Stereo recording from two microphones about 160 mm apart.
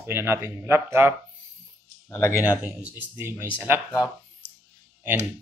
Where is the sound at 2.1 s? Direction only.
15° left (ahead or behind).